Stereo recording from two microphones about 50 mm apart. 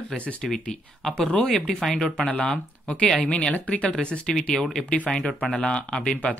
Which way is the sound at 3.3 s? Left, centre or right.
Left.